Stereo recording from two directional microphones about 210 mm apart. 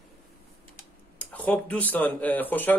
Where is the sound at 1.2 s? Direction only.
5° left (ahead or behind).